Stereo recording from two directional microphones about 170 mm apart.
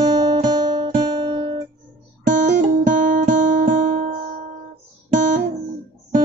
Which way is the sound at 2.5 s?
45° right (ahead or behind).